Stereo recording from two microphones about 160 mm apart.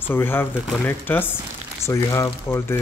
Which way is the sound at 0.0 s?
15° left (ahead or behind).